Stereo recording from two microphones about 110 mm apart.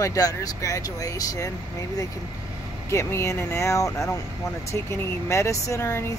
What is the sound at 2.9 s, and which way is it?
Speech, 30° left (ahead or behind).